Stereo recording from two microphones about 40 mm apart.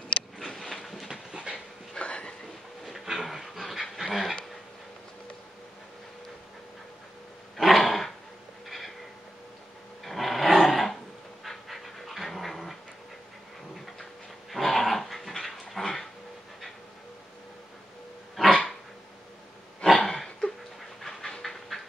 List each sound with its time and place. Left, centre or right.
0.7 s train: centre
1.3 s dog: right
2.0 s a sound: left
3.1 s dog: centre
7.5 s dog: centre
8.6 s a sound: centre
10.0 s roar: centre
11.4 s dog: centre
14.5 s dog: centre
18.4 s dog: centre
19.8 s a sound: centre